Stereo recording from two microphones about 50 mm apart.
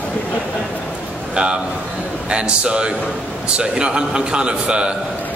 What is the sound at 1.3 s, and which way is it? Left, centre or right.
A man's voice, centre.